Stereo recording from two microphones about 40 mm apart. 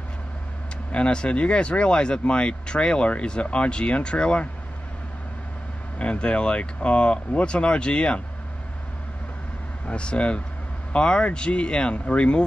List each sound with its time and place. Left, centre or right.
0.9 s speech: left
5.9 s speech: left
9.8 s speech: left